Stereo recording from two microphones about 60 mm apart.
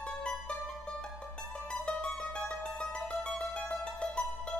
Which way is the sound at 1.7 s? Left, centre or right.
Centre.